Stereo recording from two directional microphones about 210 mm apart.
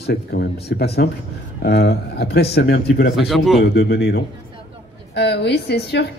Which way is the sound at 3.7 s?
50° left (ahead or behind).